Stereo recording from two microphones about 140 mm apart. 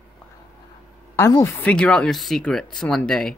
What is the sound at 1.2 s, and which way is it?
Speech, 20° left (ahead or behind).